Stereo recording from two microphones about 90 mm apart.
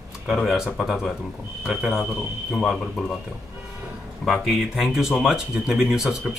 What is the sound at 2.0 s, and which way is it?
Speech, 10° left (ahead or behind).